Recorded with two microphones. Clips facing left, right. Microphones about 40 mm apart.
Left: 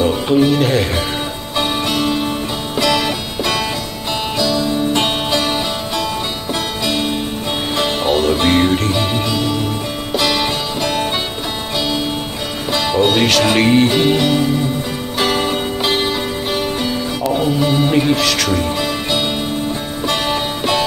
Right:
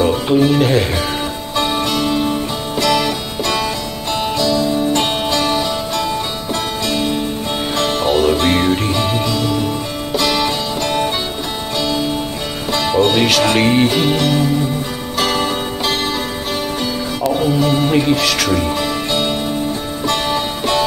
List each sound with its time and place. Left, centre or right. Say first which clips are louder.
0.0 s speech: even; centre
1.6 s music: even; centre
12.7 s music: even; centre
17.4 s speech: even; centre
20.1 s music: even; centre